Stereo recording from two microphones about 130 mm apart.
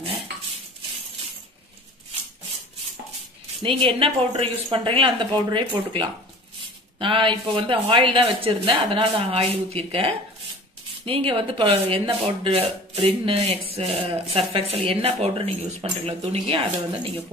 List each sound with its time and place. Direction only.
3.7 s speech: 40° right (ahead or behind)